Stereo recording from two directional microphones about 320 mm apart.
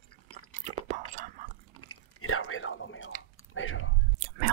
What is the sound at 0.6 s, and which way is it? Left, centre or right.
Whispering, right.